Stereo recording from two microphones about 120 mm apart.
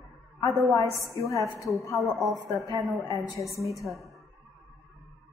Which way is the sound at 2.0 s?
Centre (ahead or behind).